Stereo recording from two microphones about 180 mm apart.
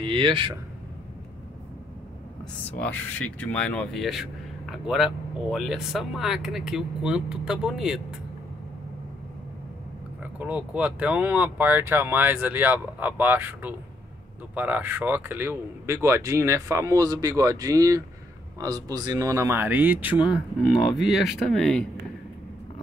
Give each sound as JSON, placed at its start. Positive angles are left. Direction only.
{"t": 0.0, "sound": "speech", "side_deg": -30}
{"t": 2.8, "sound": "speech", "side_deg": 10}
{"t": 10.2, "sound": "speech", "side_deg": -10}